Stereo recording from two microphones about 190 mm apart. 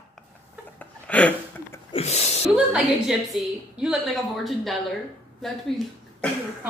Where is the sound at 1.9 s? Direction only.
35° left (ahead or behind).